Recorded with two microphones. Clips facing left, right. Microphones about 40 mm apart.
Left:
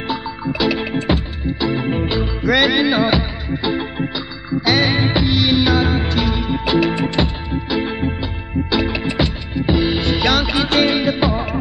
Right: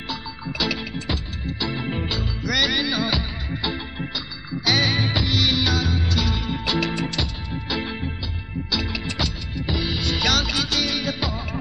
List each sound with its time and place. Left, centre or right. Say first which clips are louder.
0.1 s music: left 8 dB; centre
0.9 s music: left 10 dB; left
1.4 s music: left 8 dB; centre
2.1 s music: left 8 dB; left
3.4 s music: left 7 dB; centre
5.9 s music: left 6 dB; left
8.6 s music: left 7 dB; left
10.7 s music: left 9 dB; left